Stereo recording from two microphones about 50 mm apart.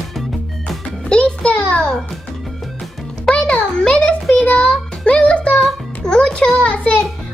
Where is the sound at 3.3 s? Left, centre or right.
Centre.